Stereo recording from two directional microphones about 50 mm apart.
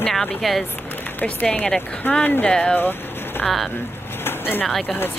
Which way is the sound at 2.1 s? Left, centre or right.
Left.